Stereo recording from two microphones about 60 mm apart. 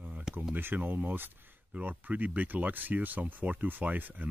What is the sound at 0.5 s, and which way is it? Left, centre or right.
Speech, right.